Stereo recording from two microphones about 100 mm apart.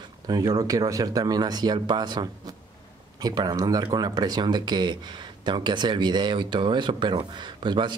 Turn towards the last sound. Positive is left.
turn(degrees=-50)  # may be behind; listen again after turning